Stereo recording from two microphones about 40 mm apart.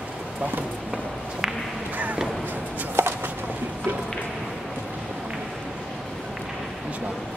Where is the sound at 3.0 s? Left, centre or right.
Right.